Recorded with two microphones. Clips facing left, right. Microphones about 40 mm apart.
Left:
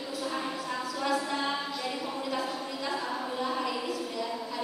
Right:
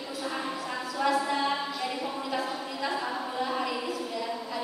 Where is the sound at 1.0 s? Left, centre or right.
Centre.